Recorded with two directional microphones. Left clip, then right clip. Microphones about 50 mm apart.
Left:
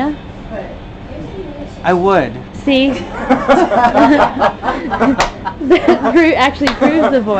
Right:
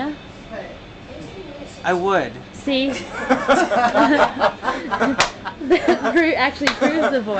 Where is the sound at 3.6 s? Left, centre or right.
Right.